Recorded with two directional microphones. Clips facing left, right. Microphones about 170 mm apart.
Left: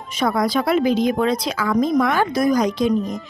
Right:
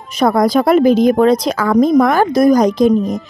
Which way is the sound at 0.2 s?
45° right (ahead or behind).